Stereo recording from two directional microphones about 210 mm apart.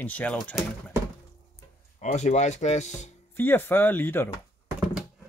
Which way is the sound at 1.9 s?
35° left (ahead or behind).